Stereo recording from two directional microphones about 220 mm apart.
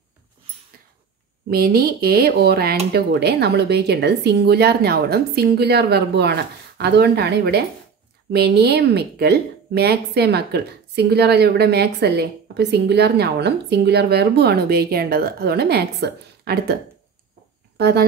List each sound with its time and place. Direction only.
1.5 s speech: 45° right (ahead or behind)
17.7 s speech: 50° right (ahead or behind)